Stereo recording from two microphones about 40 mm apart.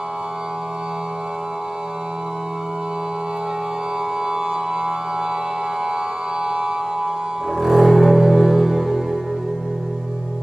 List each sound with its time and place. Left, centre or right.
4.3 s music: centre
6.4 s music: centre
7.5 s music: centre